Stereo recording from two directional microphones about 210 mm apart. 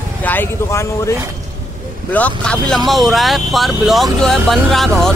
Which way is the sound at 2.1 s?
5° left (ahead or behind).